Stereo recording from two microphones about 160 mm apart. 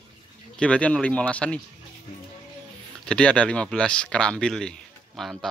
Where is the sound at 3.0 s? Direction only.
5° left (ahead or behind).